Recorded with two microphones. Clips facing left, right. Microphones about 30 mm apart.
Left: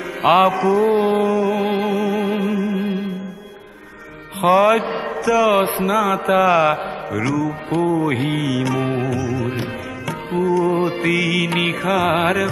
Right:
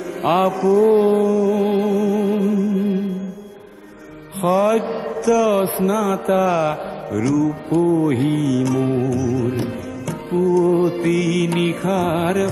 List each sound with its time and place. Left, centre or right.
0.2 s mantra: left
0.8 s music: left
4.5 s mantra: left
9.6 s music: left
11.8 s mantra: left